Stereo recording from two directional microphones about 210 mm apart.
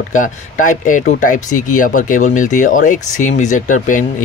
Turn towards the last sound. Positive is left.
turn(degrees=40)  # may be behind; listen again after turning